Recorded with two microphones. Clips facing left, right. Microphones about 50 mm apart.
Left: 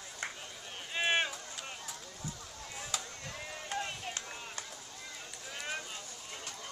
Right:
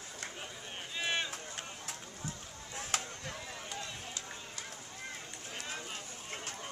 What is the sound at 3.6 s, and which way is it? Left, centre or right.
Run, left.